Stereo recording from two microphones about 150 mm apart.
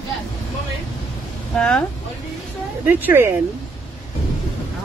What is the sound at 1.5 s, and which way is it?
Speech, 5° left (ahead or behind).